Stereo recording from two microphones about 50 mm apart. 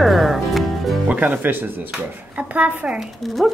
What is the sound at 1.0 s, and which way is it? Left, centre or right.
Speech, right.